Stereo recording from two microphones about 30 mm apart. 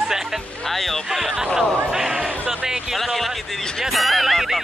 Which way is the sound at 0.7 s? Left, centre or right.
Centre.